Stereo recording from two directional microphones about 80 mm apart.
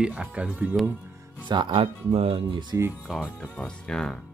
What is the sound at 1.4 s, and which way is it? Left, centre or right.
Speech, right.